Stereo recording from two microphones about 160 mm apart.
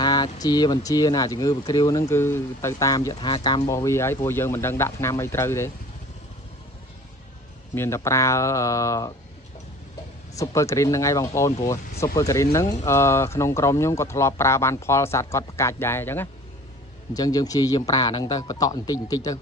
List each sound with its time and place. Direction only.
0.0 s a man's voice: 25° left (ahead or behind)
3.1 s speech: 30° left (ahead or behind)
7.7 s a man's voice: 15° left (ahead or behind)
10.3 s a man's voice: 20° left (ahead or behind)